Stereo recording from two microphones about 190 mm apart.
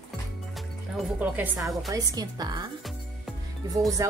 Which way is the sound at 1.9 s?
20° right (ahead or behind).